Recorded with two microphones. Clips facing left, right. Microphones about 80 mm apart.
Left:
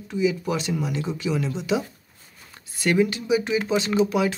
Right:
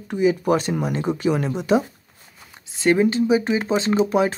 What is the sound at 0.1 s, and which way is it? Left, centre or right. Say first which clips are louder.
Speech: right 5 dB; right.